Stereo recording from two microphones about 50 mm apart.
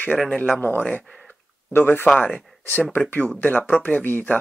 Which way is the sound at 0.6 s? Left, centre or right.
Left.